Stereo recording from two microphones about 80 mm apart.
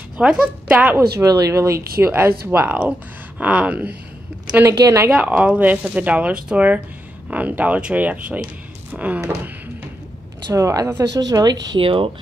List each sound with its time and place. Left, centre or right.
0.2 s speech: centre
1.2 s speech: right; by 3.9 s centre
4.6 s speech: right
5.1 s speech: centre
10.5 s speech: right